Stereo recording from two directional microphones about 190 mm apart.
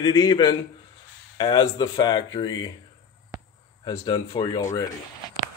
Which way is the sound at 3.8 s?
25° left (ahead or behind).